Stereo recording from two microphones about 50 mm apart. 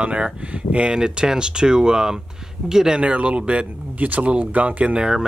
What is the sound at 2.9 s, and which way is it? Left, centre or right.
Speech, right.